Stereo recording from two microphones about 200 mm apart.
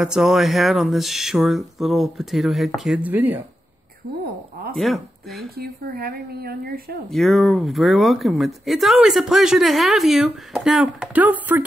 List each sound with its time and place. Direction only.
0.0 s speech: 5° right (ahead or behind)
4.7 s speech: centre (ahead or behind)
5.6 s speech: 50° right (ahead or behind)
7.1 s speech: centre (ahead or behind)